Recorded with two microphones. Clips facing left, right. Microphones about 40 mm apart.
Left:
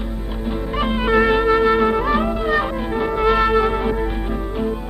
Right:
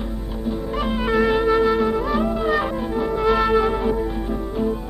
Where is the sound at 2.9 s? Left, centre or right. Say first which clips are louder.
Left 3 dB; left.